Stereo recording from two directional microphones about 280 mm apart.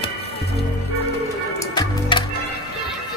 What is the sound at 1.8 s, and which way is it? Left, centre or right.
Music, centre.